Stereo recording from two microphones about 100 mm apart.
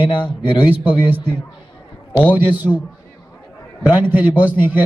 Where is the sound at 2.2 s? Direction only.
15° right (ahead or behind).